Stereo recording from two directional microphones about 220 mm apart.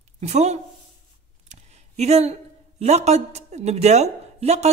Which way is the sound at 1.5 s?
30° right (ahead or behind).